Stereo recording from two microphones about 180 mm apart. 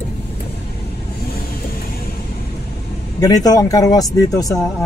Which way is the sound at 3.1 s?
20° left (ahead or behind).